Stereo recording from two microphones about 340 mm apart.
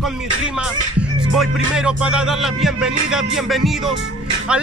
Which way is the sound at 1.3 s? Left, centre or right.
Centre.